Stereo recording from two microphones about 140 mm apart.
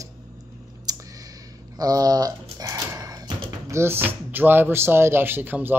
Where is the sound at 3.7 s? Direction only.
15° right (ahead or behind).